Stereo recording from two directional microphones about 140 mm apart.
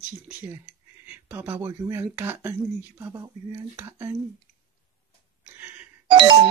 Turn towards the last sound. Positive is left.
turn(degrees=-35)  # may be behind; listen again after turning